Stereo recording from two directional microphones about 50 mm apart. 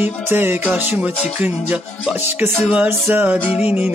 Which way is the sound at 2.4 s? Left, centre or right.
Right.